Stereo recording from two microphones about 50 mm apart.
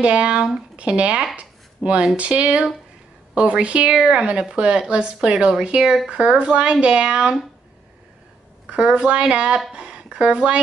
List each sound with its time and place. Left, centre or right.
0.0 s a woman's voice: right
1.3 s a sound: right
2.1 s a woman's voice: right
8.6 s a woman's voice: right